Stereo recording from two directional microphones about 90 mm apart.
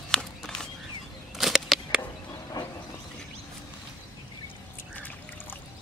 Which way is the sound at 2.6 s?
50° left (ahead or behind).